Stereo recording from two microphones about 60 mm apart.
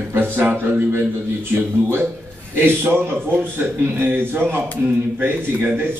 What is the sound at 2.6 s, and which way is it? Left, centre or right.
A man's voice, right.